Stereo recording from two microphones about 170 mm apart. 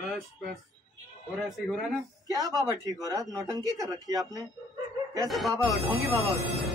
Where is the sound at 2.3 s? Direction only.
20° right (ahead or behind).